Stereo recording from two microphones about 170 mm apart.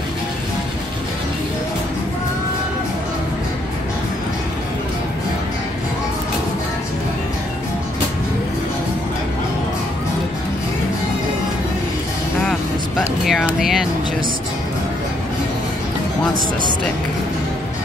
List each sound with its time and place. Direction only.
12.4 s music: centre (ahead or behind)